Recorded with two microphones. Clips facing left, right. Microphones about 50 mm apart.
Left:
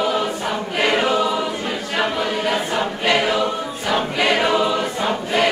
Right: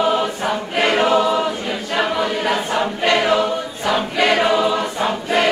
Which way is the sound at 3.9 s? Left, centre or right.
Centre.